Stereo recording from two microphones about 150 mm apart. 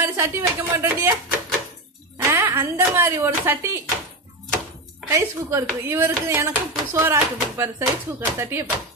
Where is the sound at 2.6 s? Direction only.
20° right (ahead or behind).